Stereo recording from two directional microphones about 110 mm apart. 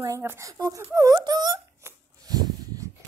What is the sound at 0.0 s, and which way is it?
A woman's voice, 25° right (ahead or behind).